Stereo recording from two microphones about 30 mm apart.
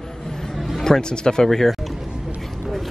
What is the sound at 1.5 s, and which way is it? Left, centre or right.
Speech, centre.